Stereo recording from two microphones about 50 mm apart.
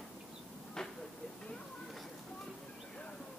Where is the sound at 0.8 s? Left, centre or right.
Centre.